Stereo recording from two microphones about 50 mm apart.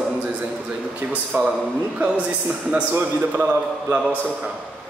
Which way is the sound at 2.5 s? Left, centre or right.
Right.